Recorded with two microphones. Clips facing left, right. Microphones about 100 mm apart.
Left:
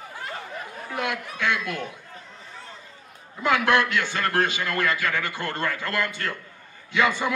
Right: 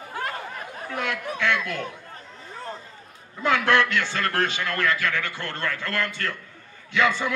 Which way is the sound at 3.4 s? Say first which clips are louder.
Even; 15° left (ahead or behind).